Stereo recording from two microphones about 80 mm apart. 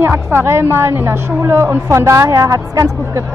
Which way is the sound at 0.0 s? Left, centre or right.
Right.